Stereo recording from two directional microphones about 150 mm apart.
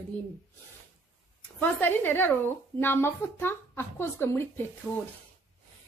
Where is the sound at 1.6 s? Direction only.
15° left (ahead or behind).